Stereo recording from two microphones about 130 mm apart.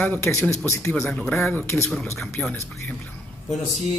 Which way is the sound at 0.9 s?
5° left (ahead or behind).